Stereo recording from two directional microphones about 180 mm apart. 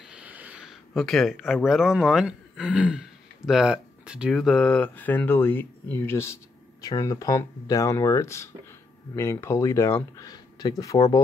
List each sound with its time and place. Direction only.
0.1 s speech: 10° right (ahead or behind); by 11.1 s 20° left (ahead or behind)